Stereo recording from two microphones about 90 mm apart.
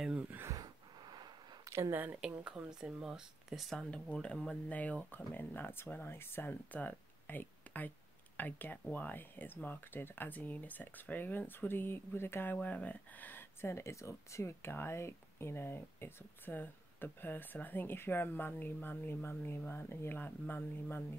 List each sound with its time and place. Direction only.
0.5 s a sound: 45° right (ahead or behind)
1.7 s speech: 30° right (ahead or behind)
2.1 s speech: 10° right (ahead or behind); by 12.5 s 25° left (ahead or behind)
12.5 s speech: 15° left (ahead or behind)